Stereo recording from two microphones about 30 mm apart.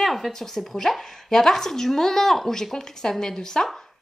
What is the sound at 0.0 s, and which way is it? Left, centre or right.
Speech, centre.